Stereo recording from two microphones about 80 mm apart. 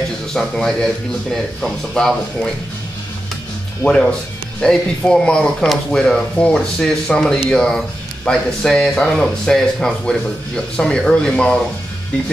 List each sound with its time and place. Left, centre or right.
0.3 s speech: centre
3.8 s speech: centre